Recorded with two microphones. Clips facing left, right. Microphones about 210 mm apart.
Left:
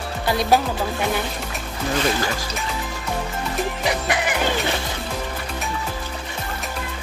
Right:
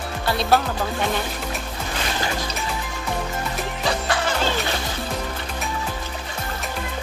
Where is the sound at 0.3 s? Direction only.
15° left (ahead or behind).